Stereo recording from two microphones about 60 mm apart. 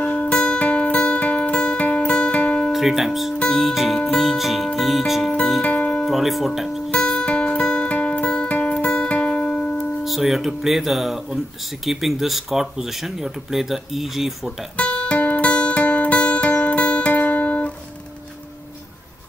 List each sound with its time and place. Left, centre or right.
0.0 s music: left
2.7 s speech: centre
5.6 s music: centre
6.0 s speech: centre
7.0 s music: centre
7.2 s music: centre
10.0 s speech: centre
14.8 s music: centre